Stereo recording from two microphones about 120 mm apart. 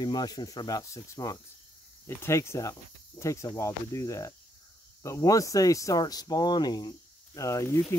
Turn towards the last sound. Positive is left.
turn(degrees=25)  # may be behind; listen again after turning